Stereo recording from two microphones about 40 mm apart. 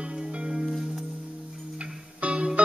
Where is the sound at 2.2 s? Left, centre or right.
Right.